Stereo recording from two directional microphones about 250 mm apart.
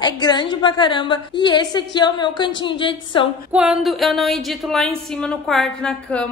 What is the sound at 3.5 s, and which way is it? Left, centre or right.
A woman's voice, centre.